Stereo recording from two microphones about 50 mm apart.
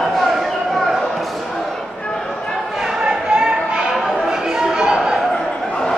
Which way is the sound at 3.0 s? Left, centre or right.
Centre.